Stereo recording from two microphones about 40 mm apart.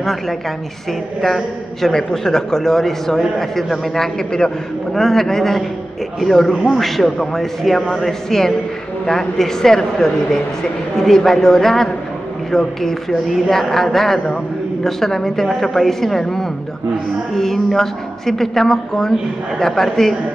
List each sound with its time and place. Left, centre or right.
0.0 s a woman's voice: centre